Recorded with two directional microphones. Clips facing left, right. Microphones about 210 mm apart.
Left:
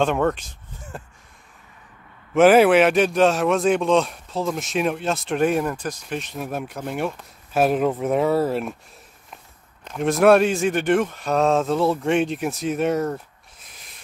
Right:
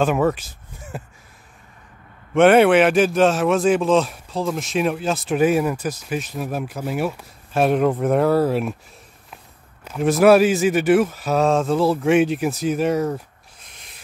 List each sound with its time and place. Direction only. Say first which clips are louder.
0.0 s speech: right 2 dB; 5° right (ahead or behind)
2.3 s a man's voice: right 1 dB; centre (ahead or behind)
9.8 s a man's voice: right 2 dB; centre (ahead or behind)